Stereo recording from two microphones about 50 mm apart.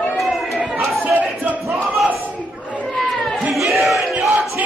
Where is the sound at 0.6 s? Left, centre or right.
Centre.